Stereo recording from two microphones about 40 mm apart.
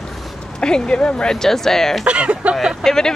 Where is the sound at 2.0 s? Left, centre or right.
Right.